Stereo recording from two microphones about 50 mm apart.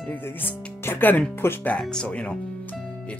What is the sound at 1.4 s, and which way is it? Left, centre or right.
Speech, left.